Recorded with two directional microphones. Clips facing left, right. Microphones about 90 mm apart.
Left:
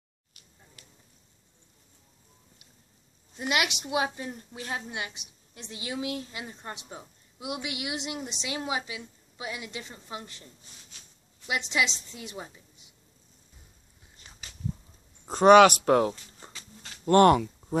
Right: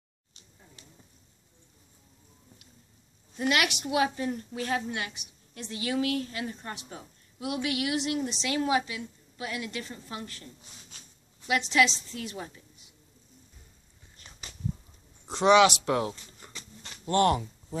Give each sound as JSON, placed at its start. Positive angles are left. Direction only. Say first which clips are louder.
{"t": 0.3, "sound": "a sound", "louder": "right 2 dB", "side_deg": -25}
{"t": 3.3, "sound": "a woman's voice", "louder": "right 2 dB", "side_deg": 20}
{"t": 11.4, "sound": "a woman's voice", "louder": "right 4 dB", "side_deg": 20}
{"t": 15.2, "sound": "speech", "louder": "left 4 dB", "side_deg": 45}
{"t": 16.4, "sound": "a sound", "louder": "left 1 dB", "side_deg": 30}
{"t": 17.0, "sound": "speech", "louder": "left 6 dB", "side_deg": 50}